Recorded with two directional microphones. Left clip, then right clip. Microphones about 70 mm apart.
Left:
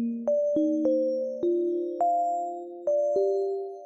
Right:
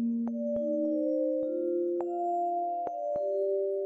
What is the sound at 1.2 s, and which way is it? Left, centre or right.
Music, left.